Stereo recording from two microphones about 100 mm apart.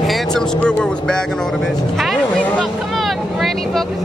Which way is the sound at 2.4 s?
15° left (ahead or behind).